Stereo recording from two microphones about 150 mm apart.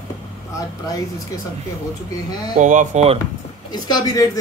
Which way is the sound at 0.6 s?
25° left (ahead or behind).